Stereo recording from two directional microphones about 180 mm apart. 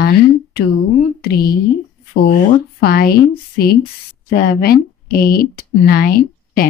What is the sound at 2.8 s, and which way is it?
Speech, 55° left (ahead or behind).